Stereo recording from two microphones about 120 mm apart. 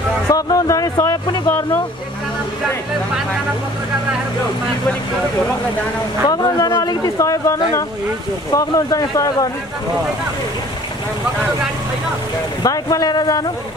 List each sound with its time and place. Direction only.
0.3 s speech: 30° left (ahead or behind)
6.2 s speech: 30° left (ahead or behind)
12.6 s speech: 30° left (ahead or behind)